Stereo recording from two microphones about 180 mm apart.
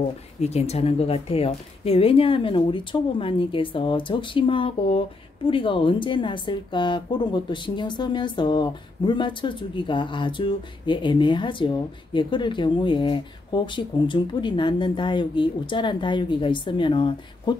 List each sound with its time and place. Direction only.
0.4 s a woman's voice: 35° left (ahead or behind)